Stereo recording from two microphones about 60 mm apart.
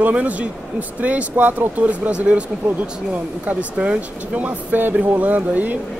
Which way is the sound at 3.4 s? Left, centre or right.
Right.